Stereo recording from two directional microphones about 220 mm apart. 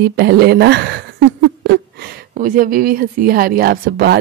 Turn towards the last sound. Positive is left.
turn(degrees=-45)  # may be behind; listen again after turning